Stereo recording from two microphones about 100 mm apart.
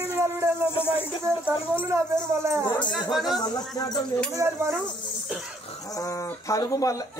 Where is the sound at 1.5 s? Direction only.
20° right (ahead or behind).